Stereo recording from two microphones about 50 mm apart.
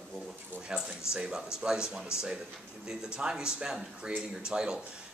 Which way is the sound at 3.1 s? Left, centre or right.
Centre.